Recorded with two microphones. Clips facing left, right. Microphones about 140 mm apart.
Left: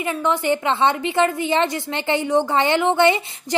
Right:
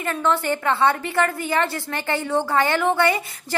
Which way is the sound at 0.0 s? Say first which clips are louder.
Left 1 dB; 15° left (ahead or behind).